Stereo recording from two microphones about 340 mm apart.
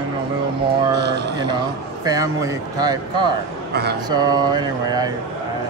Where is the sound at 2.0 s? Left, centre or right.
Centre.